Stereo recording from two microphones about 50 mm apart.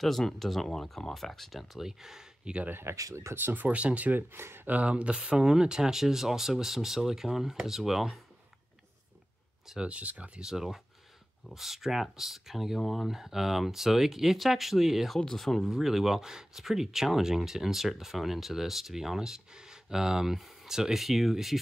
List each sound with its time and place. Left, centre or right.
0.0 s speech: centre
2.7 s speech: right
3.3 s speech: right
4.3 s speech: right
4.6 s speech: right; by 8.2 s centre
9.8 s speech: right
10.4 s speech: centre
15.1 s speech: centre
15.7 s speech: centre